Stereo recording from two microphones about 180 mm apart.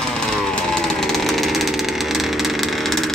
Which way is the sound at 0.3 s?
5° left (ahead or behind).